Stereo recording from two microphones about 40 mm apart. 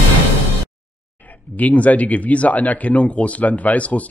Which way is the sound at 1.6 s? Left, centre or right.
Left.